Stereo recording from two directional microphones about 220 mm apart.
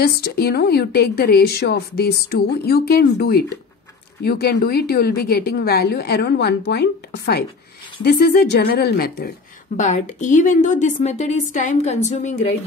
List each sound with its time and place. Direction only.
0.0 s a woman's voice: 45° left (ahead or behind)